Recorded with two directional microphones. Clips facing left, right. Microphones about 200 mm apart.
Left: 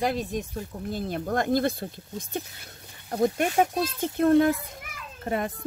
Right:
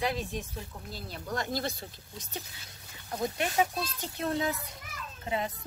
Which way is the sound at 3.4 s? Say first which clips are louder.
Left 6 dB; 50° left (ahead or behind).